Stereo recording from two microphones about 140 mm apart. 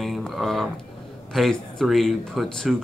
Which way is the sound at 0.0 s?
Centre (ahead or behind).